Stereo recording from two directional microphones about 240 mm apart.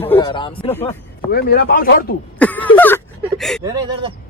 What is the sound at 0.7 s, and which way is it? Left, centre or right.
Speech, centre.